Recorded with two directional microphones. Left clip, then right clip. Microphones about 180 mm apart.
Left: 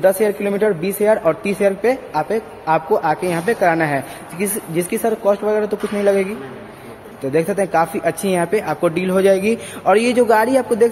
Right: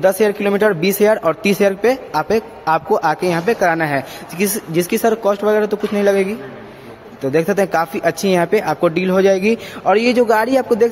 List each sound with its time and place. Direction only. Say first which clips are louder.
0.0 s speech: right 1 dB; 30° right (ahead or behind)
7.3 s speech: right 1 dB; 25° right (ahead or behind)